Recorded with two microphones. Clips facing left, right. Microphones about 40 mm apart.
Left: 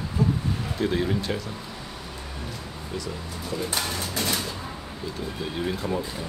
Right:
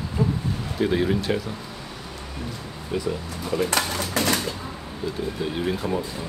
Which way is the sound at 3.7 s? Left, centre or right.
Right.